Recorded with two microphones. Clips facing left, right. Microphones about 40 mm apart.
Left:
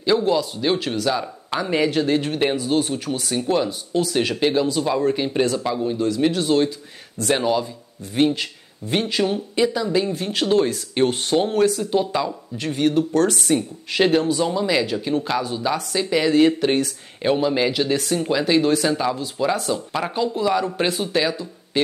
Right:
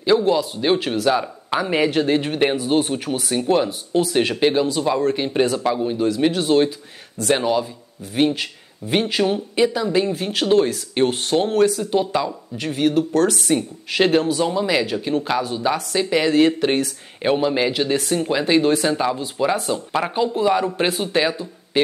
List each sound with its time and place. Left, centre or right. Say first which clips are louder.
0.0 s speech: right 2 dB; centre
6.0 s speech: right 1 dB; centre
21.0 s speech: right 1 dB; centre